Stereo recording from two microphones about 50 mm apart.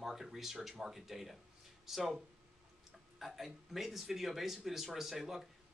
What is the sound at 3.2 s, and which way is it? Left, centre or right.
Speech, centre.